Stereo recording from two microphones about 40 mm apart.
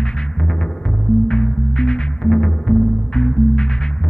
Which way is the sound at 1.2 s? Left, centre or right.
Centre.